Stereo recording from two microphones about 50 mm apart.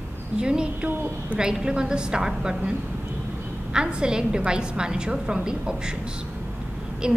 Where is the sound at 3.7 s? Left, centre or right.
Centre.